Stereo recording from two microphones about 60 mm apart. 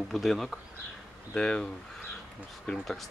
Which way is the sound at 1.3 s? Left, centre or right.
Centre.